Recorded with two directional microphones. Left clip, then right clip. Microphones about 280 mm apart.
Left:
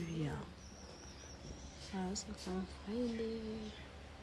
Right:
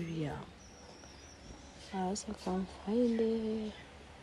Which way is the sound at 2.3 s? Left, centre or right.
Centre.